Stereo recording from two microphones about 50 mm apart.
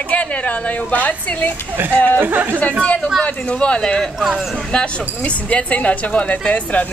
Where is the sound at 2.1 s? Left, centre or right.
Right.